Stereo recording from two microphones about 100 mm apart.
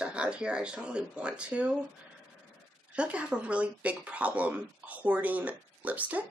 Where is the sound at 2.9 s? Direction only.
10° right (ahead or behind).